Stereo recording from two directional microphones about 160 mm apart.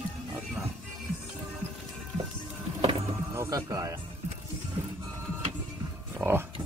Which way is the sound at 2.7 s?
35° right (ahead or behind).